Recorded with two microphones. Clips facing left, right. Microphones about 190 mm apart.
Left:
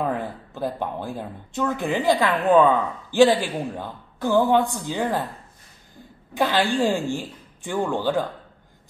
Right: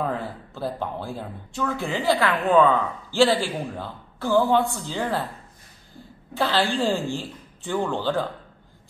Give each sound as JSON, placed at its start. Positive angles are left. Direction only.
{"t": 0.1, "sound": "a man's voice", "side_deg": 15}
{"t": 6.3, "sound": "a man's voice", "side_deg": 15}